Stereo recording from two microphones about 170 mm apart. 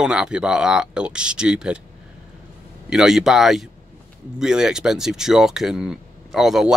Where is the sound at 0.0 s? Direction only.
5° right (ahead or behind).